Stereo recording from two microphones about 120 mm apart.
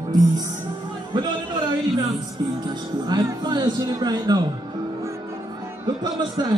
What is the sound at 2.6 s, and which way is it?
Speech, 35° right (ahead or behind).